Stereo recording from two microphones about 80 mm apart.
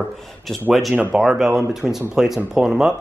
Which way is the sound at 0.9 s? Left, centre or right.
Centre.